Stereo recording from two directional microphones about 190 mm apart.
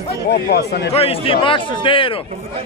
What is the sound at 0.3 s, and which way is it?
Speech, 60° left (ahead or behind).